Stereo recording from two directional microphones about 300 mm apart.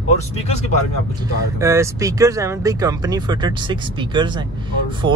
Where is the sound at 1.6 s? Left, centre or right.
Centre.